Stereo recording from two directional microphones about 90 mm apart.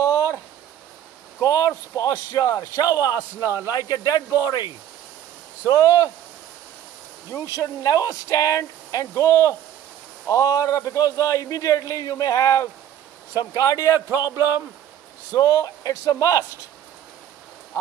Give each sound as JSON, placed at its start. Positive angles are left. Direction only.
{"t": 1.4, "sound": "speech", "side_deg": 45}
{"t": 3.3, "sound": "a man's voice", "side_deg": -25}
{"t": 4.5, "sound": "speech", "side_deg": 55}
{"t": 5.7, "sound": "speech", "side_deg": 35}
{"t": 7.3, "sound": "speech", "side_deg": 40}
{"t": 13.9, "sound": "a man's voice", "side_deg": -25}
{"t": 15.3, "sound": "speech", "side_deg": 40}